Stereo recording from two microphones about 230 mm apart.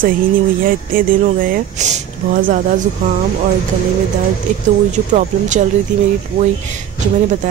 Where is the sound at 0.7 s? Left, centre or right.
Right.